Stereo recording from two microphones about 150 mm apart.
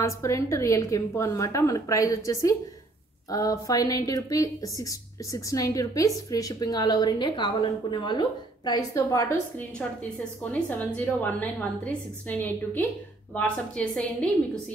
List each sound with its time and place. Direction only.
0.0 s a woman's voice: 20° left (ahead or behind)
9.6 s a woman's voice: 10° left (ahead or behind)